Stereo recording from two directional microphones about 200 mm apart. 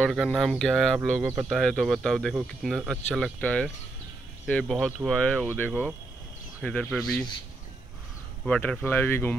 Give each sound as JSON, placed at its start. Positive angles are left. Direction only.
{"t": 0.0, "sound": "speech", "side_deg": 0}
{"t": 1.2, "sound": "speech", "side_deg": -15}
{"t": 1.5, "sound": "speech", "side_deg": 0}
{"t": 8.5, "sound": "speech", "side_deg": 5}